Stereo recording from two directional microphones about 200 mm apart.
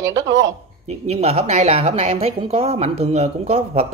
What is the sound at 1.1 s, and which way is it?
A woman's voice, 30° right (ahead or behind).